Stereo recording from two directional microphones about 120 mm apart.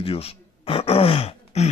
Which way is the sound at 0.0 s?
55° left (ahead or behind).